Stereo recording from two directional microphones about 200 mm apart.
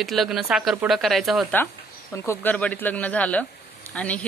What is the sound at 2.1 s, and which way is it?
Speech, 15° left (ahead or behind).